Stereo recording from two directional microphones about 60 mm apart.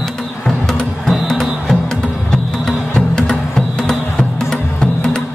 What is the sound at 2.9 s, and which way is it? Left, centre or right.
Music, centre.